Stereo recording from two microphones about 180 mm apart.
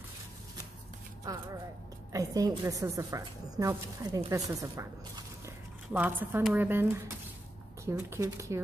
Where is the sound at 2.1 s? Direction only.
20° right (ahead or behind).